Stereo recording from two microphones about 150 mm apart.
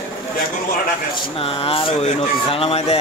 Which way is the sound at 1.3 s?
40° left (ahead or behind).